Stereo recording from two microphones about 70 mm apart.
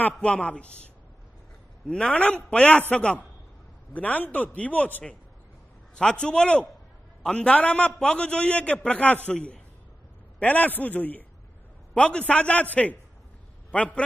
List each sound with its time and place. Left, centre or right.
0.2 s a man's voice: centre
1.9 s a man's voice: centre